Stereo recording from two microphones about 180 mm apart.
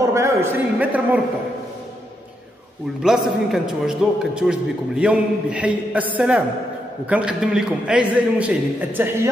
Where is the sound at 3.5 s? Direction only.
5° right (ahead or behind).